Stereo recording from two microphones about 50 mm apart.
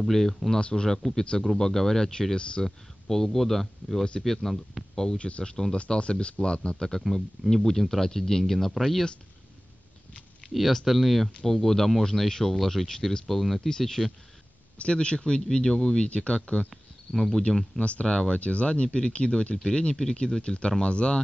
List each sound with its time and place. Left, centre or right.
0.0 s speech: centre
0.6 s speech: left
0.8 s speech: centre
2.6 s speech: centre
10.5 s speech: centre
14.8 s speech: left
16.7 s a sound: centre
17.4 s speech: centre
17.7 s speech: left
18.0 s speech: centre
18.4 s speech: left
19.5 s speech: centre